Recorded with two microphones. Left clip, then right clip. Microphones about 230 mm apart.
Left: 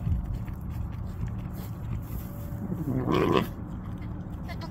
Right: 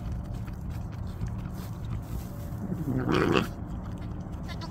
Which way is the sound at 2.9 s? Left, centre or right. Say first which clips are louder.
Left 1 dB; centre.